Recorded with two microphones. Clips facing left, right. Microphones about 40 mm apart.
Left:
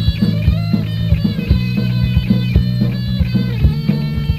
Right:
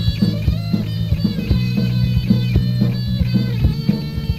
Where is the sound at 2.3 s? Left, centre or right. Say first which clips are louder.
Left 1 dB; centre.